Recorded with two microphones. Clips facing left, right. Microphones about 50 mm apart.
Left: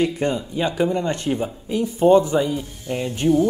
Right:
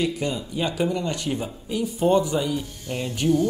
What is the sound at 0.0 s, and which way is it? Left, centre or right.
Speech, left.